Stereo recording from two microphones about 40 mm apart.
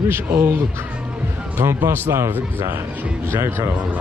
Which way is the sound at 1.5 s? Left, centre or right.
Right.